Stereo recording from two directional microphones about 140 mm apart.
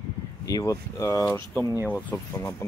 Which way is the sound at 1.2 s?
10° left (ahead or behind).